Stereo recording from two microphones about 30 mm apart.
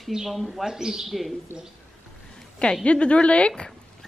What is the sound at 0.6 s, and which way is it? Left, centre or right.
Speech, centre.